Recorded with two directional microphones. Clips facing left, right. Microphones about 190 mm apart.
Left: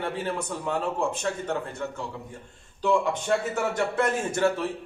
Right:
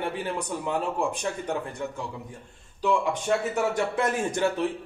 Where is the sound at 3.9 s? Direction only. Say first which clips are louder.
Even; 15° right (ahead or behind).